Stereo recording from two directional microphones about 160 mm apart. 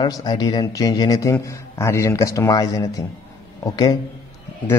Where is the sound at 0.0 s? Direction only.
25° left (ahead or behind).